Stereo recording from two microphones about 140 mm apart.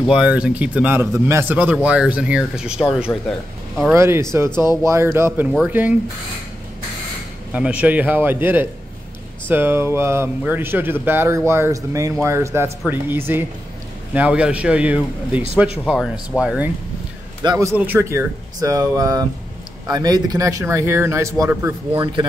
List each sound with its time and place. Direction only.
0.0 s a man's voice: 5° right (ahead or behind)
3.9 s a man's voice: 20° right (ahead or behind)
7.5 s a man's voice: 10° right (ahead or behind)
17.4 s a man's voice: 25° right (ahead or behind)
17.7 s speech: 15° right (ahead or behind)